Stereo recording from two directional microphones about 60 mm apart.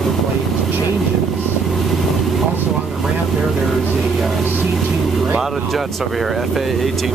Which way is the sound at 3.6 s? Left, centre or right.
Centre.